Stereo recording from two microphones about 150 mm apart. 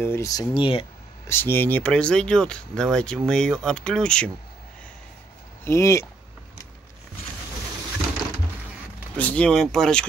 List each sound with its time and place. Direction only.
0.0 s speech: 20° left (ahead or behind)
0.6 s speech: 35° left (ahead or behind)
1.2 s speech: 15° left (ahead or behind)
5.7 s speech: 20° left (ahead or behind)
9.1 s speech: 10° left (ahead or behind)